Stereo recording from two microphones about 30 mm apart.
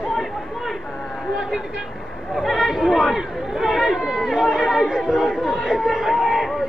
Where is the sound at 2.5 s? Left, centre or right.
Centre.